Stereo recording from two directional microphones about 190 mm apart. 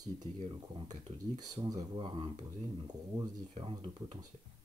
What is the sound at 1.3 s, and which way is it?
Speech, 20° right (ahead or behind).